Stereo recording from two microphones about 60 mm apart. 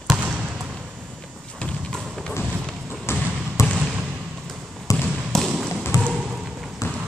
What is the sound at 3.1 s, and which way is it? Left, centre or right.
Trickle, left.